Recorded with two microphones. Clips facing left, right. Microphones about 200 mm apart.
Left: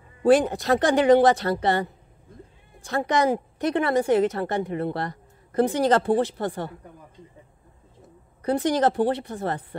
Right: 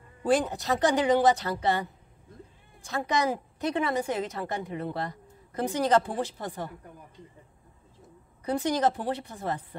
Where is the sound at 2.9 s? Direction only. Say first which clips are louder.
Left 5 dB; 70° left (ahead or behind).